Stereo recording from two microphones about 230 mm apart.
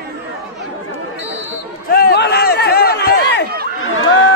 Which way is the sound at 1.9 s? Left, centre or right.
Left.